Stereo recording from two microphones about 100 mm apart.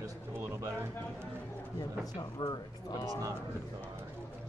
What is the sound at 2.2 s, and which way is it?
Speech, 45° left (ahead or behind).